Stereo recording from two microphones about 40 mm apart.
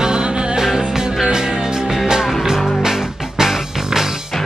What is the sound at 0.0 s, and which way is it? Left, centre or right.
Music, right.